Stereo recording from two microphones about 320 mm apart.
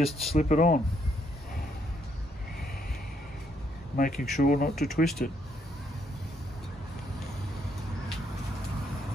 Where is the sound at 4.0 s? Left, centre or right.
Left.